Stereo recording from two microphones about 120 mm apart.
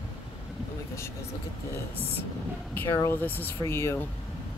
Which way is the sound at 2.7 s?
20° left (ahead or behind).